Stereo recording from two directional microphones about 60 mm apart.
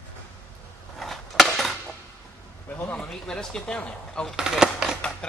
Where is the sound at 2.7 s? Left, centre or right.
Left.